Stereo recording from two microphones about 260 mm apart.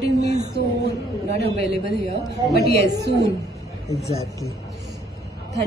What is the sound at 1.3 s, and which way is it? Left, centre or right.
A man's voice, left.